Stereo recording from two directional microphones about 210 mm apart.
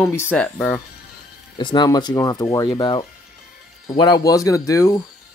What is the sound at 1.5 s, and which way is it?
Speech, 20° left (ahead or behind).